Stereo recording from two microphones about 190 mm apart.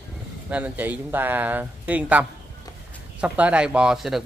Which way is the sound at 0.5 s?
10° right (ahead or behind).